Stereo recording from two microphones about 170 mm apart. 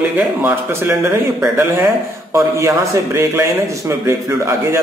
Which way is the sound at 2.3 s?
15° right (ahead or behind).